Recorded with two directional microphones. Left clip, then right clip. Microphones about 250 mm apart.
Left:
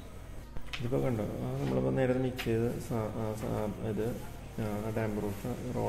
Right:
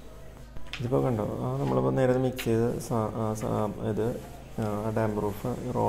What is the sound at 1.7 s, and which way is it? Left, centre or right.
Speech, centre.